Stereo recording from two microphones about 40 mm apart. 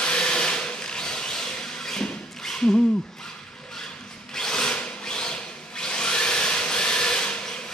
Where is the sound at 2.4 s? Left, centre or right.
Centre.